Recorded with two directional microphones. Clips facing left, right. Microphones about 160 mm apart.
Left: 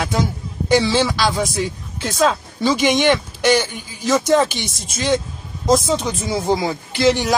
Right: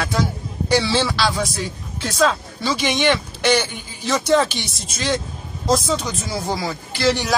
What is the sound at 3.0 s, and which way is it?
Speech, centre (ahead or behind).